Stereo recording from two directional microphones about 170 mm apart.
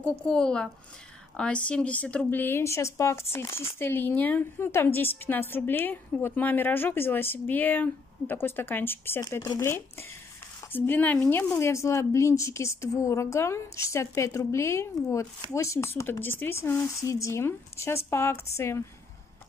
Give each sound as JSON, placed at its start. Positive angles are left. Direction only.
{"t": 0.3, "sound": "a woman's voice", "side_deg": 5}